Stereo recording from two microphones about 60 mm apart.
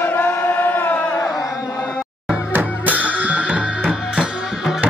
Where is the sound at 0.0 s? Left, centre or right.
Left.